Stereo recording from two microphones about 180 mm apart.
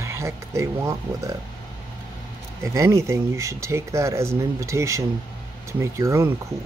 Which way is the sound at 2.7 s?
15° right (ahead or behind).